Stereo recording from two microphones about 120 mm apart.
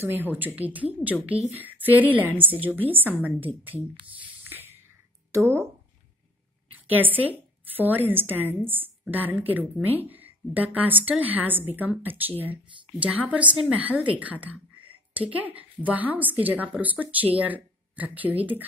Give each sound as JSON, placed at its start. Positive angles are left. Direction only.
{"t": 0.0, "sound": "a woman's voice", "side_deg": -20}
{"t": 6.9, "sound": "a woman's voice", "side_deg": -15}